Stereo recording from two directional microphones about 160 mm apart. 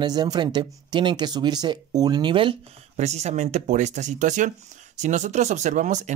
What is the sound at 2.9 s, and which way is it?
Speech, 45° right (ahead or behind).